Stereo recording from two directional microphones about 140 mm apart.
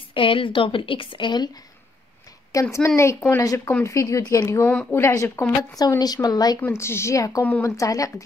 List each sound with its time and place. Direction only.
0.1 s a woman's voice: 40° left (ahead or behind)
2.5 s a woman's voice: 25° left (ahead or behind)